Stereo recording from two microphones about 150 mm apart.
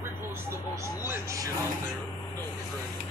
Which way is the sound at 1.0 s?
20° right (ahead or behind).